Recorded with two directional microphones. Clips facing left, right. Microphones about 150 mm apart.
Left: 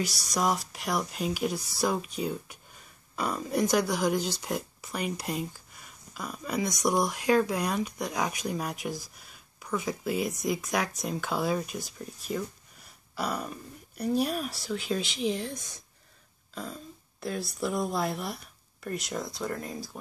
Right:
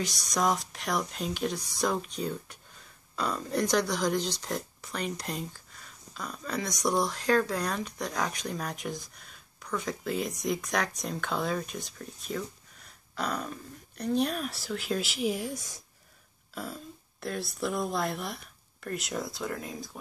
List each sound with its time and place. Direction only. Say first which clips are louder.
0.0 s speech: even; 5° left (ahead or behind)